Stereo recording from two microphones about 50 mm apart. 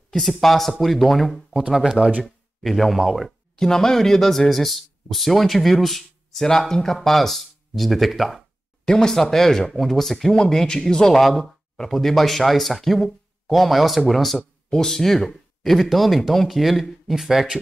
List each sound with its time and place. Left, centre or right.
0.1 s speech: centre
2.0 s speech: right
2.2 s speech: centre
3.3 s speech: centre
8.8 s speech: centre